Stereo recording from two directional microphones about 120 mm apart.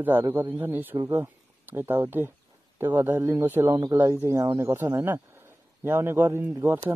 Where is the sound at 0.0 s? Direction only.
20° right (ahead or behind).